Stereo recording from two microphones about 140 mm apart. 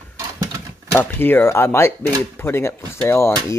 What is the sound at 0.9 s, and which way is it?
Speech, 15° left (ahead or behind).